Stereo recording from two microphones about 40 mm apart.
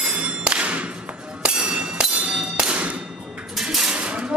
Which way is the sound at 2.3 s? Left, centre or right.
Right.